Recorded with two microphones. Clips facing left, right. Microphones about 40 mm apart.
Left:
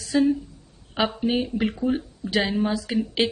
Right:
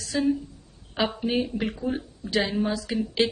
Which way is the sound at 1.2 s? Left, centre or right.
Centre.